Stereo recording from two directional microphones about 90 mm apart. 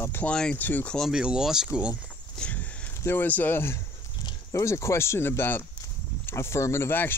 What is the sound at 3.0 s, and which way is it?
Speech, 25° left (ahead or behind).